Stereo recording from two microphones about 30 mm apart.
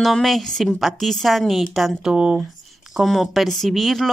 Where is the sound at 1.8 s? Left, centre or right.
Centre.